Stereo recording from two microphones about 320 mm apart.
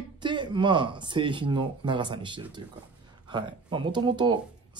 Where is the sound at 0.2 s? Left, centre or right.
Centre.